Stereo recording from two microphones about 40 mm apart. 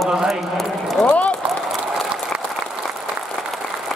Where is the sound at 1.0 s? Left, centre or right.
Left.